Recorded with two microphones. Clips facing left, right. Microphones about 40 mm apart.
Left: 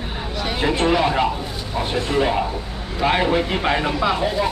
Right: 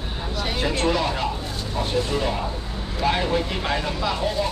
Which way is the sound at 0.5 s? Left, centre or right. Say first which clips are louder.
Left 4 dB; left.